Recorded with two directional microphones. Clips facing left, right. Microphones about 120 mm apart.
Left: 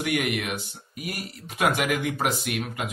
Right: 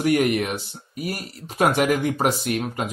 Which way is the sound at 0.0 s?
35° right (ahead or behind).